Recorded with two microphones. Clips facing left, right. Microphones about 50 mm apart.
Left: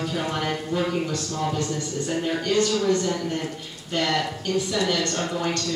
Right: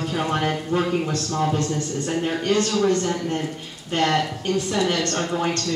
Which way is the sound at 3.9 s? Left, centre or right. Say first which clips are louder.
Right 3 dB; right.